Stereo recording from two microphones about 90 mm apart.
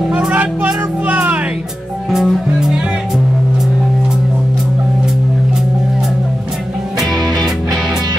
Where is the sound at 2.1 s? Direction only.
5° right (ahead or behind).